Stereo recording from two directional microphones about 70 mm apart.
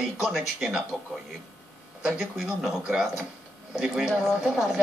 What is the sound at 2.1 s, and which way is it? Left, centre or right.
A man's voice, centre.